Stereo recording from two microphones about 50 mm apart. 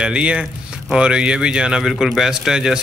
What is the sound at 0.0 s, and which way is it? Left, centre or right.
A man's voice, right.